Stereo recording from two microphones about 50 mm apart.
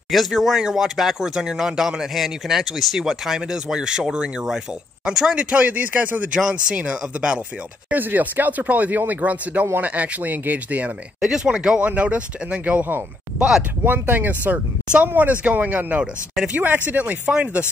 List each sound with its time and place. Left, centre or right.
0.1 s speech: centre; by 6.3 s right
6.3 s speech: centre
7.9 s speech: right
11.1 s speech: centre
13.8 s speech: right
17.3 s speech: centre